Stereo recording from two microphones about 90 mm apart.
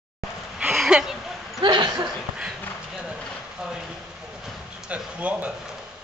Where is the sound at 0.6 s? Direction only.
10° right (ahead or behind).